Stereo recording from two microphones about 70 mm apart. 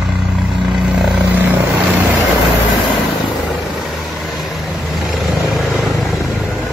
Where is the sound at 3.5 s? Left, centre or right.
Centre.